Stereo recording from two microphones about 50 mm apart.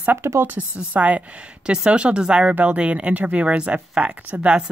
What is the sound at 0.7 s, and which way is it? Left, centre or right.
Speech, right.